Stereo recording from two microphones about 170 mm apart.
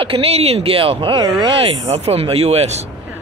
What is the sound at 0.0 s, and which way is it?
Speech, 35° right (ahead or behind).